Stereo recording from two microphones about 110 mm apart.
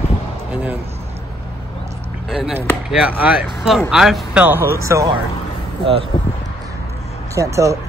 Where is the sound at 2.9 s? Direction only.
10° right (ahead or behind); by 5.1 s 30° right (ahead or behind).